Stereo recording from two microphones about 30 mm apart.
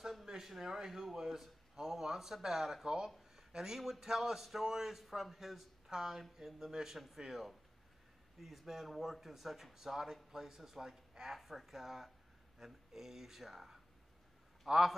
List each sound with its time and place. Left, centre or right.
0.4 s speech: centre
3.2 s a sound: centre
4.0 s speech: centre